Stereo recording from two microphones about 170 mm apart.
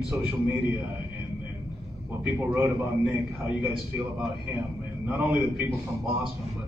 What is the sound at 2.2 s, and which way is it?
A man's voice, 10° right (ahead or behind).